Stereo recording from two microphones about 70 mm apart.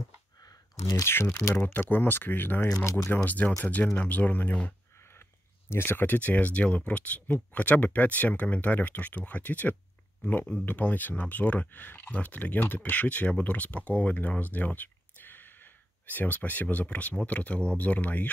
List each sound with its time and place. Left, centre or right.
0.4 s a sound: left
1.0 s speech: left
1.7 s speech: left
2.8 s speech: left
3.1 s speech: left
5.0 s speech: left